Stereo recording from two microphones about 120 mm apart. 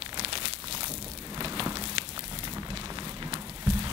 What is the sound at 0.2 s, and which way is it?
Crumpling, 50° right (ahead or behind).